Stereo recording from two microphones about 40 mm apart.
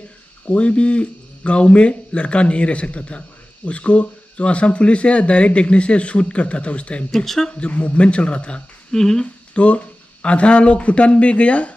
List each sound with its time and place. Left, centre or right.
0.5 s speech: left
7.1 s speech: centre
7.6 s speech: left
8.9 s speech: centre
9.2 s speech: left